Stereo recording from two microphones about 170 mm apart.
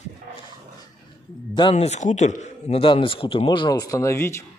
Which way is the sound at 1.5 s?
30° left (ahead or behind).